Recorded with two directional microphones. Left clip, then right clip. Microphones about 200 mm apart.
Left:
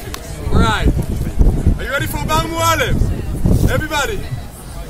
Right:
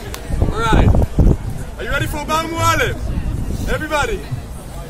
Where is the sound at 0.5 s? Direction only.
5° right (ahead or behind).